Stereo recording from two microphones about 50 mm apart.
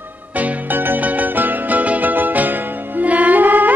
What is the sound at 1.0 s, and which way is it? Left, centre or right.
Music, right.